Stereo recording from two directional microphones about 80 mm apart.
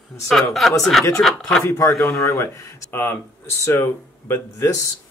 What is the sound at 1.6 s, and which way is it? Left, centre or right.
Speech, left.